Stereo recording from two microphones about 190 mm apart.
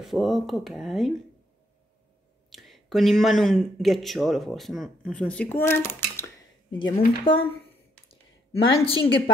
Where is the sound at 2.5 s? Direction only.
Centre (ahead or behind).